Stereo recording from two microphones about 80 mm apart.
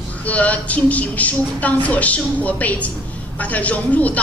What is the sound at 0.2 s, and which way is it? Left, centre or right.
A woman's voice, centre.